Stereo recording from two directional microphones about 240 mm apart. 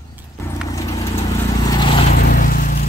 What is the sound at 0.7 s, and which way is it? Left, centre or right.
Clip-clop, centre.